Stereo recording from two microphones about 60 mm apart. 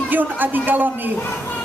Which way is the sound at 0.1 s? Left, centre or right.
Right.